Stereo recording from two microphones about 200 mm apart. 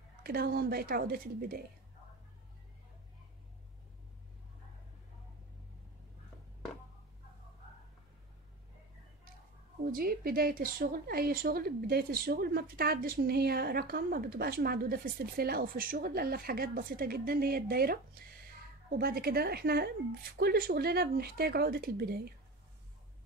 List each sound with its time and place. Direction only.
0.2 s a woman's voice: 50° right (ahead or behind)
9.8 s a woman's voice: 45° right (ahead or behind)
18.9 s a woman's voice: 50° right (ahead or behind)